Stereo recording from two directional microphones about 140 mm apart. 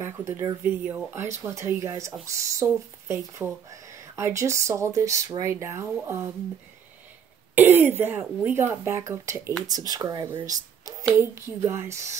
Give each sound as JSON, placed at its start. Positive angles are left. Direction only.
{"t": 0.0, "sound": "speech", "side_deg": -20}
{"t": 7.5, "sound": "speech", "side_deg": -15}
{"t": 10.4, "sound": "a sound", "side_deg": -25}
{"t": 11.1, "sound": "speech", "side_deg": -20}